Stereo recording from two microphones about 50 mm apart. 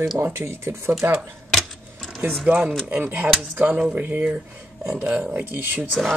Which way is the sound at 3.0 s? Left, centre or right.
Right.